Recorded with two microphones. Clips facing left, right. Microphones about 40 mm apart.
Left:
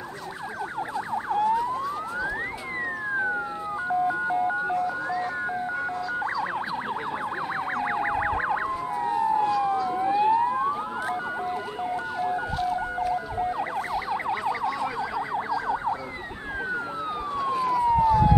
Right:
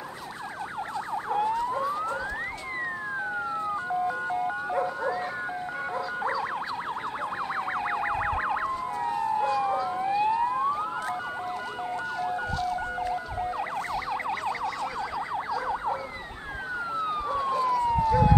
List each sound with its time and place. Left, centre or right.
1.1 s emergency vehicle: centre
4.1 s car alarm: centre
4.8 s music: centre
7.7 s music: centre
8.6 s police car: centre
9.9 s emergency vehicle: centre
12.2 s emergency vehicle: centre
13.1 s emergency vehicle: centre
17.4 s police car: centre